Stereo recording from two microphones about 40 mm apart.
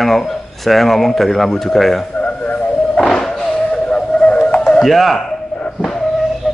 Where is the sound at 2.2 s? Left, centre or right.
Left.